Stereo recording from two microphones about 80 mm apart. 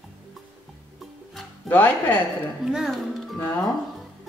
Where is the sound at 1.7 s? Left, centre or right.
Left.